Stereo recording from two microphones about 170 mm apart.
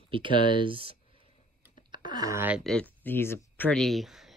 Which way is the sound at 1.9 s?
25° right (ahead or behind).